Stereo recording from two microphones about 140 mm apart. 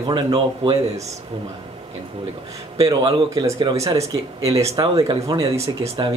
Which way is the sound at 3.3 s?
25° right (ahead or behind).